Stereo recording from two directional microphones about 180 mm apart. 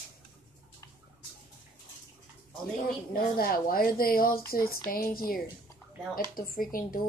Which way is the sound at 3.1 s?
55° left (ahead or behind).